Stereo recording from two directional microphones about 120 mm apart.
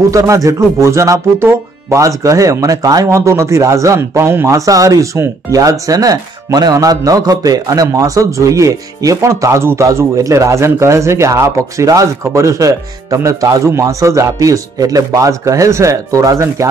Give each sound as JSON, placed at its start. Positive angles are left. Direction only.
{"t": 0.1, "sound": "speech", "side_deg": -30}